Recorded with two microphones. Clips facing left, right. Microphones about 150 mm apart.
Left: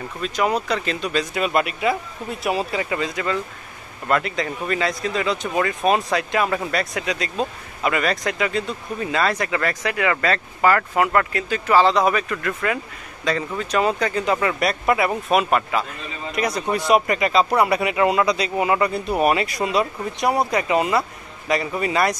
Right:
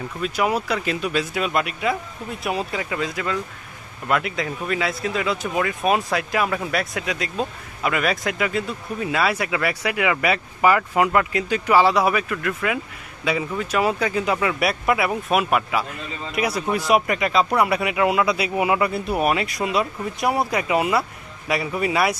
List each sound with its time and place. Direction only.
0.2 s speech: 10° right (ahead or behind)